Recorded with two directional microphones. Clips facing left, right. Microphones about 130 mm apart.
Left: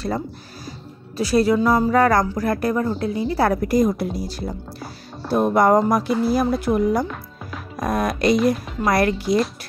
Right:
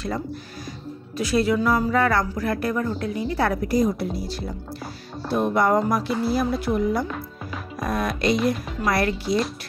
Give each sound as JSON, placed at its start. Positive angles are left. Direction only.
{"t": 0.7, "sound": "speech", "side_deg": 35}
{"t": 3.6, "sound": "speech", "side_deg": 50}